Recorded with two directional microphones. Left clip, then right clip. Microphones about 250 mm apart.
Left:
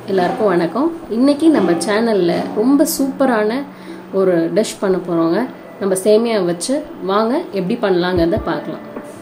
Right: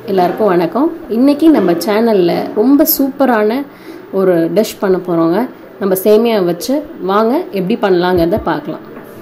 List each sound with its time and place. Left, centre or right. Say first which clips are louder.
0.1 s a woman's voice: right 4 dB; centre